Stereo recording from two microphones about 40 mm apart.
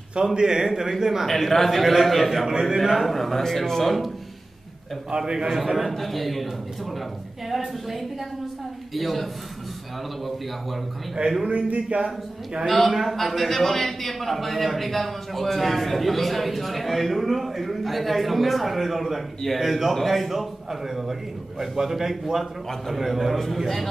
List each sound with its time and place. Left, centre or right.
0.1 s a man's voice: centre
1.2 s a man's voice: centre
5.1 s a man's voice: centre
5.5 s a man's voice: centre
11.4 s speech: right
12.6 s a man's voice: centre